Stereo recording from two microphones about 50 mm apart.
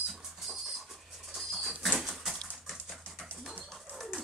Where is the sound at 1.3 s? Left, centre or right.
Centre.